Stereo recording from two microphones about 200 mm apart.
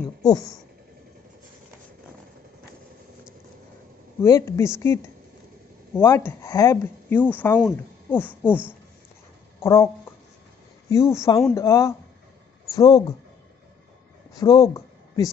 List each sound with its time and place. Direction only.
0.3 s speech: 15° left (ahead or behind)
4.2 s speech: 15° left (ahead or behind)
9.6 s a sound: 15° left (ahead or behind)
10.9 s speech: 15° left (ahead or behind)
14.3 s speech: 20° left (ahead or behind)